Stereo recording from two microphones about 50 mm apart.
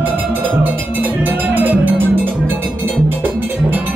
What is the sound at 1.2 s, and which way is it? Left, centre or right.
Music, right.